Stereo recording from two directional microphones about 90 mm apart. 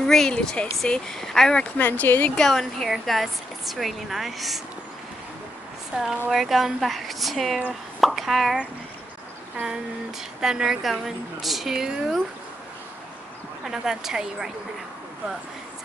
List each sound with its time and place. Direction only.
0.0 s speech: 5° left (ahead or behind)
1.8 s speech: 20° left (ahead or behind)
2.3 s speech: 5° left (ahead or behind)
5.9 s speech: 5° right (ahead or behind)
8.0 s plop: centre (ahead or behind)
10.4 s speech: 5° right (ahead or behind)
13.7 s speech: 5° right (ahead or behind)